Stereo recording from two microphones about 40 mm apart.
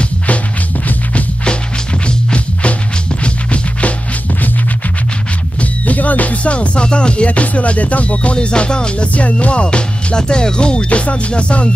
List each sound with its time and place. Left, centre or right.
2.0 s music: left
5.6 s music: left
7.2 s music: left
9.1 s music: left